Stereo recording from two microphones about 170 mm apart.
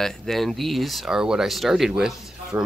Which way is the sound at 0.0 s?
Centre (ahead or behind).